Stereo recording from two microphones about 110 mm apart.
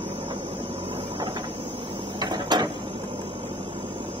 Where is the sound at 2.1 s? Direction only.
45° right (ahead or behind).